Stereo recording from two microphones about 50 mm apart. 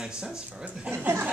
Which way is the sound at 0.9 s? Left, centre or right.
Right.